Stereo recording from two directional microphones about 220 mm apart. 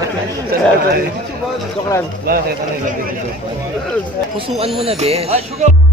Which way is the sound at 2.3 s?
45° right (ahead or behind).